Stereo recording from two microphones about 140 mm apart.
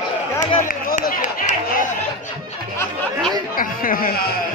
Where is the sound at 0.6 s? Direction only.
90° left; by 1.8 s 65° left (ahead or behind).